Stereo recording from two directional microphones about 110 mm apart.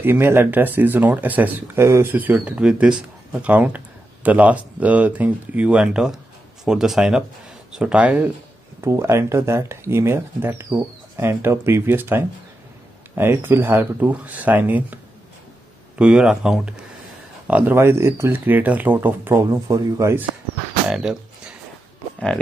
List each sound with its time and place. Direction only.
0.0 s speech: 20° right (ahead or behind)
8.8 s speech: 25° right (ahead or behind)
16.0 s speech: 5° right (ahead or behind); by 20.2 s 25° right (ahead or behind)
20.9 s speech: 5° right (ahead or behind)